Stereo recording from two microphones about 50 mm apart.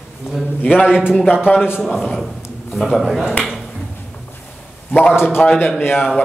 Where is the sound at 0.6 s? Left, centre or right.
Left.